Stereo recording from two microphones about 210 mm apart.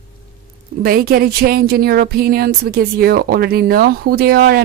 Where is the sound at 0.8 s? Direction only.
45° right (ahead or behind).